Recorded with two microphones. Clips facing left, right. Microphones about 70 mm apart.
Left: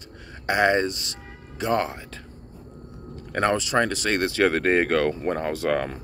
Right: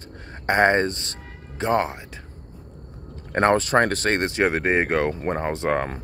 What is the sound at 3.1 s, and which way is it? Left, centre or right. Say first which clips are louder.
Speech: right 4 dB; right.